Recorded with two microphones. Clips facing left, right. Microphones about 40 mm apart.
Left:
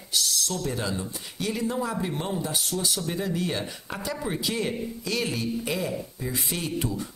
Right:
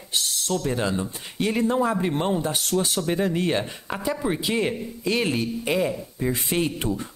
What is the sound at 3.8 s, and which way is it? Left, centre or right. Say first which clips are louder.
Speech: right 5 dB; right.